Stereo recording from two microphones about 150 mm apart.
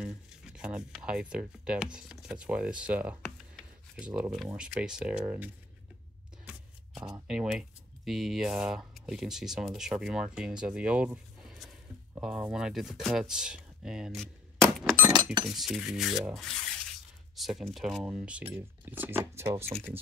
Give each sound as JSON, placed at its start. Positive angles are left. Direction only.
{"t": 0.6, "sound": "speech", "side_deg": -5}
{"t": 3.3, "sound": "a sound", "side_deg": 5}
{"t": 4.0, "sound": "speech", "side_deg": -5}
{"t": 6.4, "sound": "a sound", "side_deg": 0}
{"t": 7.2, "sound": "speech", "side_deg": -5}
{"t": 15.0, "sound": "chink", "side_deg": -25}
{"t": 15.4, "sound": "speech", "side_deg": 0}